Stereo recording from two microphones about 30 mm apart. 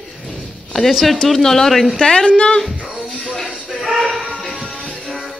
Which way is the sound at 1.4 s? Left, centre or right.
Centre.